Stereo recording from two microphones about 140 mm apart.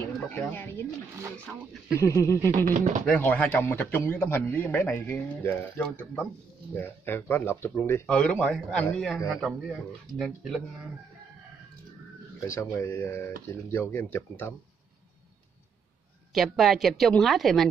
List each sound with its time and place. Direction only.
0.0 s speech: 15° left (ahead or behind)
2.0 s a sound: 20° left (ahead or behind)
2.6 s speech: 55° right (ahead or behind)
3.1 s a man's voice: 10° left (ahead or behind)
12.4 s a man's voice: 20° left (ahead or behind)
16.3 s speech: centre (ahead or behind)